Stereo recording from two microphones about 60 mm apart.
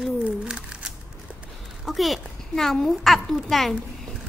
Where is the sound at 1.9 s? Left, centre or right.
Centre.